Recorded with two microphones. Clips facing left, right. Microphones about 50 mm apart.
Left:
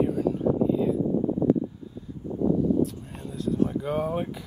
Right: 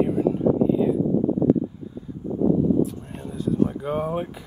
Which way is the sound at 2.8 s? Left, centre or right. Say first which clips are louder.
Right 3 dB; right.